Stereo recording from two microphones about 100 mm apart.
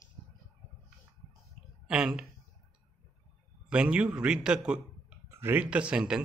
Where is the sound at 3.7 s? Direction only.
10° right (ahead or behind).